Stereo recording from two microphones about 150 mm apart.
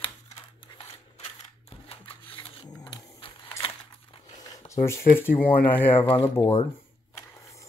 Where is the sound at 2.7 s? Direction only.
30° left (ahead or behind).